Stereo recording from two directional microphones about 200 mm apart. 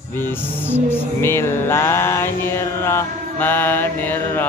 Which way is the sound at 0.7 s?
10° left (ahead or behind).